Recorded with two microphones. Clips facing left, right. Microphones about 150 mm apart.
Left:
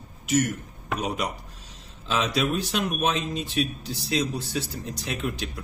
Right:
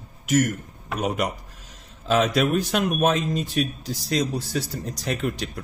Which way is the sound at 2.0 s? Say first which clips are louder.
Right 5 dB; 50° right (ahead or behind).